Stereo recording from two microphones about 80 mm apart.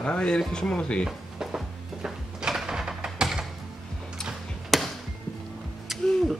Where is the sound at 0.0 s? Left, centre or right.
Centre.